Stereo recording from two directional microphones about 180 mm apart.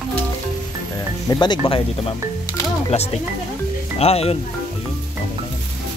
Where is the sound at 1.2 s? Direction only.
25° left (ahead or behind).